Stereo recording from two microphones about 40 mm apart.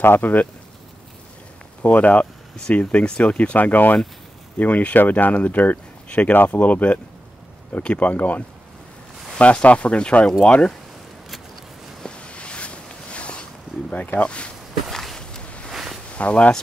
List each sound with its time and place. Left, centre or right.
0.2 s speech: left
1.8 s speech: left
3.5 s speech: left
8.0 s speech: left
12.2 s a sound: left
13.9 s speech: left
14.9 s a sound: centre
15.7 s a sound: centre
16.1 s speech: left